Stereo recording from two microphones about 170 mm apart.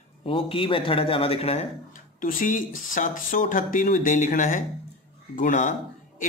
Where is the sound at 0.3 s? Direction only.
30° left (ahead or behind).